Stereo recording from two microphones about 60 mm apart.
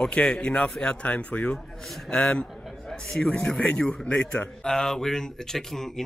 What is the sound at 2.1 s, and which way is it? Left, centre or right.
Speech, centre.